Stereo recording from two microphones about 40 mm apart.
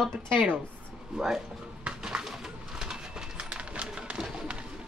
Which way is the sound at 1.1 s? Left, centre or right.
Centre.